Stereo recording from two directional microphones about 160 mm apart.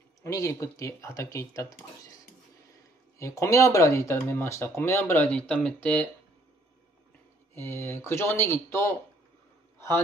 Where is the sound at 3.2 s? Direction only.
20° left (ahead or behind).